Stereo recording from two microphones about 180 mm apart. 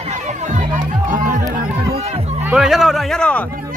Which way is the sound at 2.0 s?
35° right (ahead or behind).